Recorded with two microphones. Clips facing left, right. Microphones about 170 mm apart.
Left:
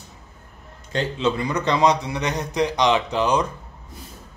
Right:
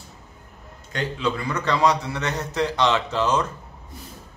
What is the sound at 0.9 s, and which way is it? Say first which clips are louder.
Speech: left 3 dB; 25° left (ahead or behind).